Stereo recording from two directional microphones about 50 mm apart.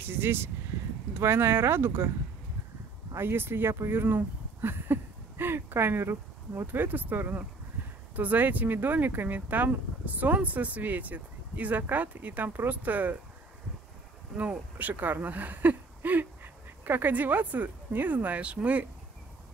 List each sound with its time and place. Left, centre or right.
0.0 s speech: right
3.2 s speech: right
14.3 s speech: right